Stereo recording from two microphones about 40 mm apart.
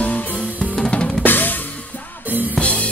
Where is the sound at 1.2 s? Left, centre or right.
Left.